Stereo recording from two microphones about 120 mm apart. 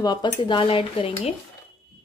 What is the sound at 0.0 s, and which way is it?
Speech, 40° left (ahead or behind).